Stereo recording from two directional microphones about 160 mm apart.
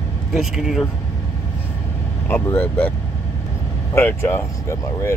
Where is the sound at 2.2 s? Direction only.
10° left (ahead or behind).